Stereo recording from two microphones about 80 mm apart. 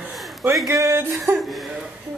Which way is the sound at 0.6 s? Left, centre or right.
Right.